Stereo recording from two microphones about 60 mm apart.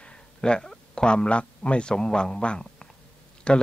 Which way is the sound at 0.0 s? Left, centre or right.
Centre.